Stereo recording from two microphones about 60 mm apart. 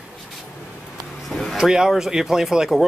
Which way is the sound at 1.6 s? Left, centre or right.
Centre.